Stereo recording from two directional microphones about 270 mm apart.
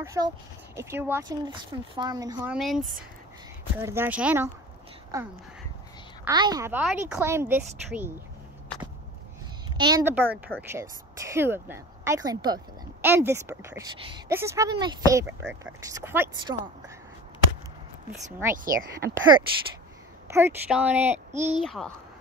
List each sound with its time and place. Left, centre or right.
0.0 s speech: centre
2.5 s a woman's voice: centre
9.8 s speech: centre
18.5 s speech: right
20.2 s a woman's voice: centre